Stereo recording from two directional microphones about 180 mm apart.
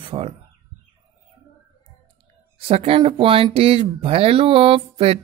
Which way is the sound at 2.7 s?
30° right (ahead or behind).